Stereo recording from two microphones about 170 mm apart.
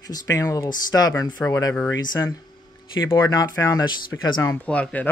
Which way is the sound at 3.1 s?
20° left (ahead or behind).